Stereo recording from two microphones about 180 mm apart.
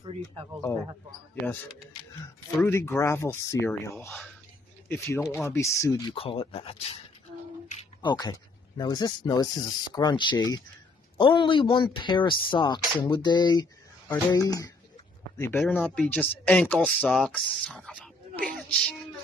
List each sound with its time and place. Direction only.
0.0 s speech: 30° right (ahead or behind)
2.6 s speech: 15° left (ahead or behind)
6.1 s speech: 30° left (ahead or behind)
8.0 s speech: 25° left (ahead or behind); by 18.9 s 5° left (ahead or behind)